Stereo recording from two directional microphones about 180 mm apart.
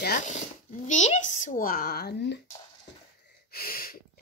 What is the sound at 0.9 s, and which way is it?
Speech, 40° left (ahead or behind).